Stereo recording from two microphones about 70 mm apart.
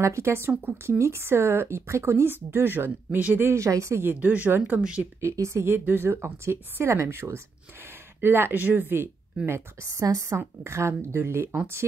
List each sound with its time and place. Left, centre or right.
0.0 s speech: right
0.5 s speech: right
0.9 s speech: right
3.4 s a woman's voice: right
4.0 s speech: right
5.2 s speech: right
9.5 s a woman's voice: right